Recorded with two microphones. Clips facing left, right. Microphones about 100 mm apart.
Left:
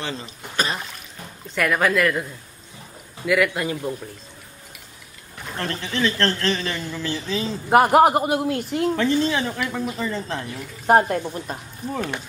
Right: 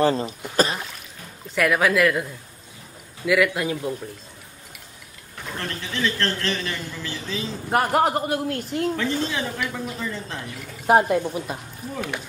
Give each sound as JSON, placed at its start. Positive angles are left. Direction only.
{"t": 0.0, "sound": "speech", "side_deg": -40}
{"t": 1.5, "sound": "speech", "side_deg": 0}
{"t": 3.3, "sound": "speech", "side_deg": 0}
{"t": 5.6, "sound": "a man's voice", "side_deg": 40}
{"t": 7.7, "sound": "a man's voice", "side_deg": 15}
{"t": 8.9, "sound": "a woman's voice", "side_deg": 50}
{"t": 10.9, "sound": "speech", "side_deg": -5}